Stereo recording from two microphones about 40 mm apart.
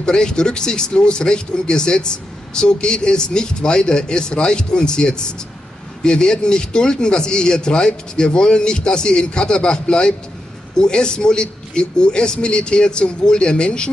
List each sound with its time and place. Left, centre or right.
0.0 s speech: centre